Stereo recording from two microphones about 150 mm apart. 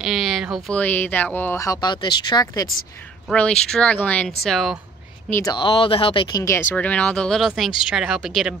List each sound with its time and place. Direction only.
0.0 s a sound: centre (ahead or behind)
0.7 s speech: 10° left (ahead or behind); by 2.6 s 30° left (ahead or behind)
3.3 s speech: 5° left (ahead or behind)
5.3 s speech: 25° left (ahead or behind)
6.3 s speech: 20° left (ahead or behind); by 8.3 s 5° right (ahead or behind)